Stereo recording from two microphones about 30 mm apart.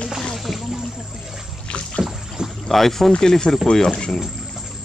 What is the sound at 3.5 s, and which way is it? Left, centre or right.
Speech, left.